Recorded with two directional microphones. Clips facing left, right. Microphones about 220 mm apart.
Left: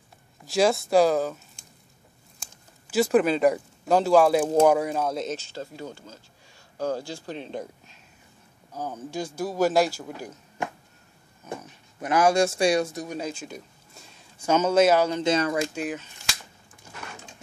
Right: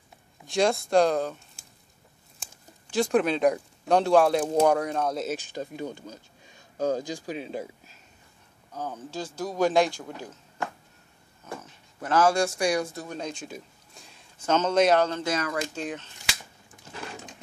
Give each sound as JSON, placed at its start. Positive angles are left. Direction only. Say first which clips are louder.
{"t": 0.5, "sound": "speech", "louder": "left 2 dB", "side_deg": 5}
{"t": 2.4, "sound": "speech", "louder": "right 3 dB", "side_deg": 5}
{"t": 8.7, "sound": "speech", "louder": "left 2 dB", "side_deg": 10}
{"t": 13.3, "sound": "a sound", "louder": "left 1 dB", "side_deg": 0}
{"t": 14.4, "sound": "speech", "louder": "left 2 dB", "side_deg": 10}
{"t": 15.2, "sound": "speech", "louder": "left 5 dB", "side_deg": 25}
{"t": 15.7, "sound": "speech", "louder": "left 3 dB", "side_deg": 10}